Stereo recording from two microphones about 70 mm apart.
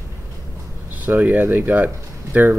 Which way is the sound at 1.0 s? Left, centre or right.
Right.